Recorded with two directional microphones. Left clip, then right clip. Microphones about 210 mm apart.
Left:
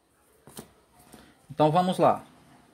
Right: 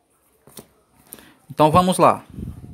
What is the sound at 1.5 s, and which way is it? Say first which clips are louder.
Speech: right 7 dB; 35° right (ahead or behind).